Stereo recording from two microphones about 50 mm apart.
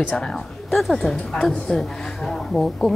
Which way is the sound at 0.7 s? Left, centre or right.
Centre.